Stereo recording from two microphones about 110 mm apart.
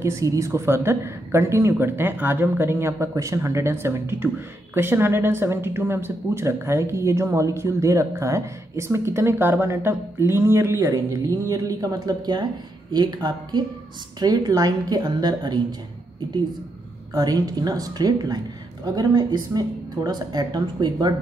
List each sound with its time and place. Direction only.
0.0 s a woman's voice: 25° right (ahead or behind)
17.1 s a woman's voice: 35° right (ahead or behind)